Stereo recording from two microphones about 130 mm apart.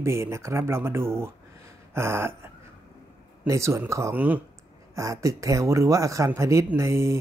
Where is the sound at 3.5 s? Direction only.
25° right (ahead or behind).